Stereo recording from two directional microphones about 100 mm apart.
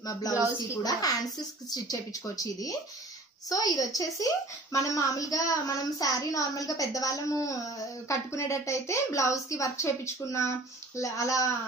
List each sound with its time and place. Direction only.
0.0 s a woman's voice: 40° left (ahead or behind)